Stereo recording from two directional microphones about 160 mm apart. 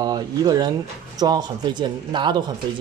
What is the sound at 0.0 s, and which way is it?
Speech, 25° right (ahead or behind).